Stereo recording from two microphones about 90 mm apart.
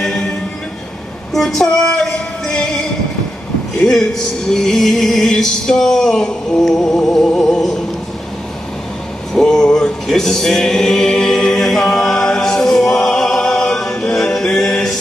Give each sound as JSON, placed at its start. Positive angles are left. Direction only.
{"t": 1.3, "sound": "music", "side_deg": 5}
{"t": 9.3, "sound": "male singing", "side_deg": 5}